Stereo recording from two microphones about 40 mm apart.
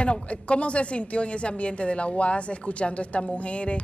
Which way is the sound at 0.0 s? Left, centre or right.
Left.